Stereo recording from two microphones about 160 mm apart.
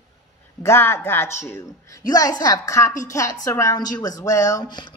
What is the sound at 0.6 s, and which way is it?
Speech, 15° left (ahead or behind).